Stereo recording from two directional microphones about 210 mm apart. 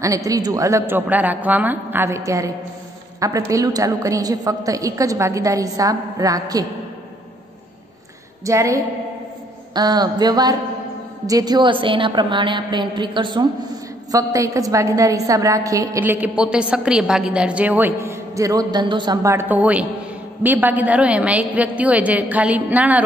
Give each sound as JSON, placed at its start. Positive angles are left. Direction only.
{"t": 0.0, "sound": "a woman's voice", "side_deg": -15}
{"t": 8.5, "sound": "a woman's voice", "side_deg": -15}